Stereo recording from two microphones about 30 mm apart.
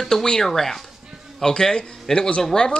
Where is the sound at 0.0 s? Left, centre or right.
Centre.